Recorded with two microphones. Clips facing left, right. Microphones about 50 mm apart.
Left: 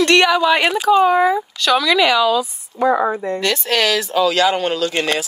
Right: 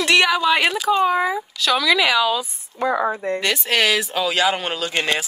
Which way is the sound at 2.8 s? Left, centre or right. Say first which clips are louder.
Left 5 dB; left.